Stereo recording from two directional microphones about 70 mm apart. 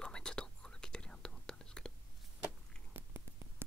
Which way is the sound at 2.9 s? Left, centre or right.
Right.